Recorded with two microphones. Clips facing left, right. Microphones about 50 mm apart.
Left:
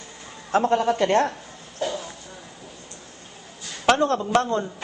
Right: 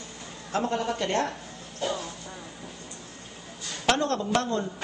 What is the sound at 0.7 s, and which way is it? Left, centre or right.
Speech, left.